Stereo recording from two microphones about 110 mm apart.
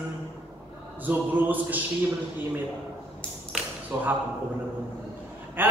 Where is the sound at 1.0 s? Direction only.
15° right (ahead or behind).